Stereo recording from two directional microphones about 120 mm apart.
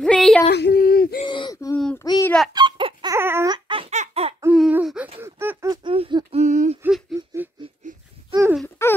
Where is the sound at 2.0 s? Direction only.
30° left (ahead or behind).